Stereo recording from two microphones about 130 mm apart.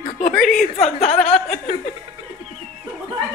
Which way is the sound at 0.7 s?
60° left (ahead or behind).